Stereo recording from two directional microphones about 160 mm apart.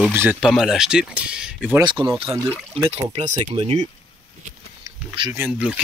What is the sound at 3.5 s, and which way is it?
Speech, 35° right (ahead or behind).